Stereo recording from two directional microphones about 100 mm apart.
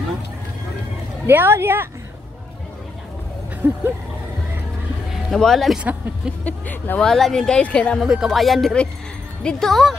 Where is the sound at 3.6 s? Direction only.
15° right (ahead or behind).